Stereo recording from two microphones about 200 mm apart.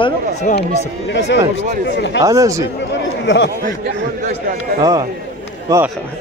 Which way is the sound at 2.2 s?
15° right (ahead or behind).